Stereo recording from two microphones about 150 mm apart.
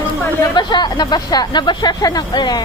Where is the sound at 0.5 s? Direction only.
30° left (ahead or behind).